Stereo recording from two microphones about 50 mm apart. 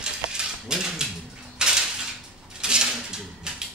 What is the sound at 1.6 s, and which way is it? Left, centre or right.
Dishes, centre.